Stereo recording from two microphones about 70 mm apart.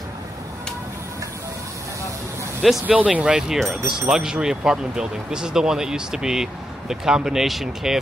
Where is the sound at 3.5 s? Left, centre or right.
Centre.